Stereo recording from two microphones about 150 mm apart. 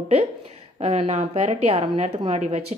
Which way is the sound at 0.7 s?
45° right (ahead or behind).